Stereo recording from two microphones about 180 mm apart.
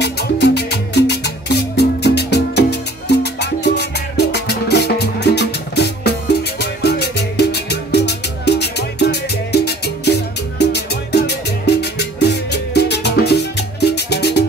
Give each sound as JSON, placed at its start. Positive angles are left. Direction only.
{"t": 0.0, "sound": "music", "side_deg": 70}